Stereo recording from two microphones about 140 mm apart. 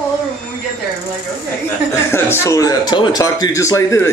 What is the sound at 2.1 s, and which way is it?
A man's voice, 20° left (ahead or behind).